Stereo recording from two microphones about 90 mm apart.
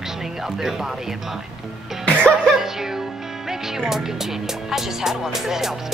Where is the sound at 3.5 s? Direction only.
5° right (ahead or behind).